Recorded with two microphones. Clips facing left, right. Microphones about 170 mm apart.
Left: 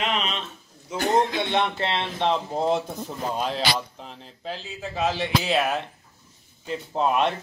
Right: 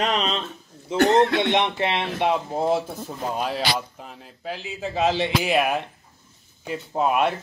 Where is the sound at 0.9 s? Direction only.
70° right (ahead or behind).